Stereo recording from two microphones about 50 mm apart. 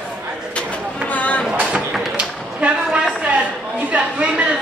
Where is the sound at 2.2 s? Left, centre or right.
Right.